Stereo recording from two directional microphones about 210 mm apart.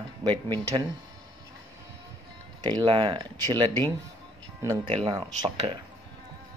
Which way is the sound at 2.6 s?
20° right (ahead or behind).